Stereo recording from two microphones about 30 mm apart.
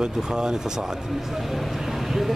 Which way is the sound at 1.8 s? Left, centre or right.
Centre.